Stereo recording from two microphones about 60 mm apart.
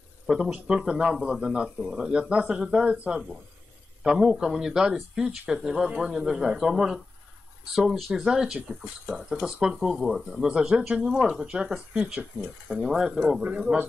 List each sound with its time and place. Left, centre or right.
0.3 s speech: centre